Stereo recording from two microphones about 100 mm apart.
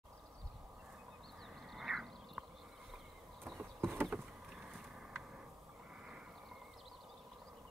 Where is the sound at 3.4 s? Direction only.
Centre (ahead or behind).